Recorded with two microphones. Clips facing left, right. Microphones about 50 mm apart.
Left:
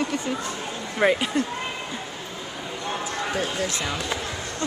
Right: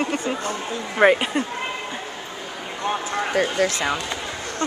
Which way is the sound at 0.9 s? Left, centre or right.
Right.